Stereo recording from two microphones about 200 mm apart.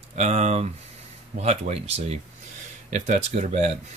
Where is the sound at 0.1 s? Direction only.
35° right (ahead or behind).